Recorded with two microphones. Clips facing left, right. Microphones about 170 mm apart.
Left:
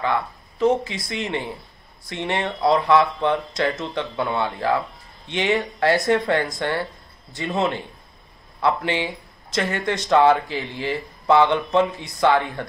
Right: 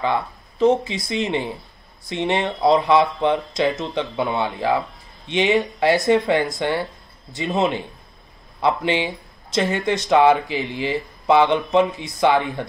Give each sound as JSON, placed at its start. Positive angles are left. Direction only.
{"t": 0.0, "sound": "speech", "side_deg": -20}